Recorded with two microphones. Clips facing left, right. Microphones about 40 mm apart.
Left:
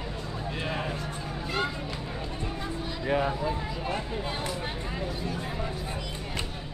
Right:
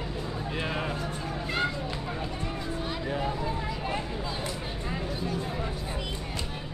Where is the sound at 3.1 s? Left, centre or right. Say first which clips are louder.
Left 6 dB; left.